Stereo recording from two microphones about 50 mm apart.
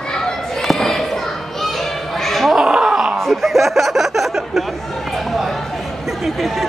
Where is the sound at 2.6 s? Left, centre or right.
Centre.